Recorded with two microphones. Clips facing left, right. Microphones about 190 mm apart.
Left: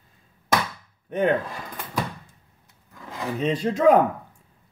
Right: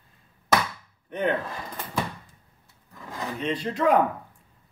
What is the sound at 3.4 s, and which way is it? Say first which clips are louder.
Speech: left 4 dB; 40° left (ahead or behind).